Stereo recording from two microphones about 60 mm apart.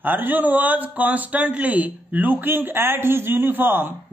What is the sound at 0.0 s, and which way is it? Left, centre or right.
A man's voice, right.